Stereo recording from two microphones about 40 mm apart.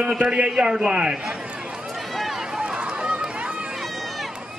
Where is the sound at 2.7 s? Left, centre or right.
Right.